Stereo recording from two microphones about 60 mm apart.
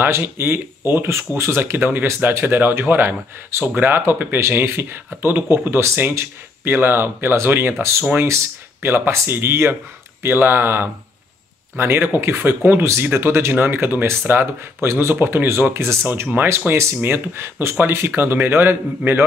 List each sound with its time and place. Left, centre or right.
0.0 s speech: right
8.8 s speech: right
12.8 s speech: right
16.7 s speech: right
17.0 s speech: right